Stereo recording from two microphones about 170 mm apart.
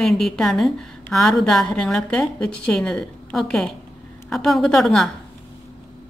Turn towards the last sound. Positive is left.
turn(degrees=0)  # may be behind; listen again after turning